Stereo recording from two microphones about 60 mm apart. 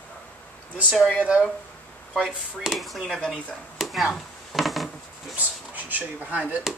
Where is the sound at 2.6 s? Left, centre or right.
Centre.